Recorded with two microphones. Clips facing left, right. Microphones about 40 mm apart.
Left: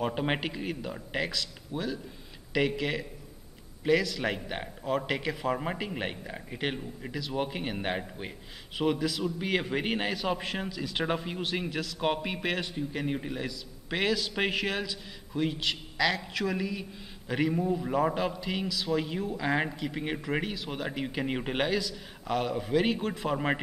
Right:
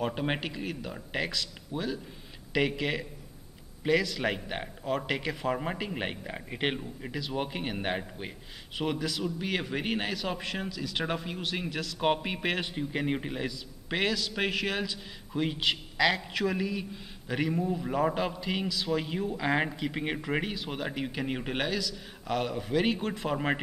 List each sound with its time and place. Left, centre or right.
0.0 s a man's voice: centre
6.2 s a man's voice: centre
6.8 s a man's voice: centre
12.6 s a man's voice: right
14.0 s a man's voice: centre